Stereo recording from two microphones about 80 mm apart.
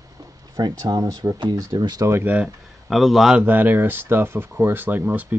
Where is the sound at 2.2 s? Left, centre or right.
Centre.